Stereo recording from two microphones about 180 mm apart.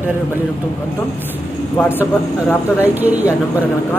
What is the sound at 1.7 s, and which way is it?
Speech, 10° left (ahead or behind).